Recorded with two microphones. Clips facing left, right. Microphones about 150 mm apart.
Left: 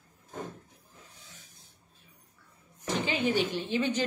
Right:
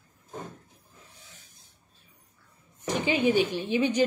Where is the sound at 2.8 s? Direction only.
15° right (ahead or behind).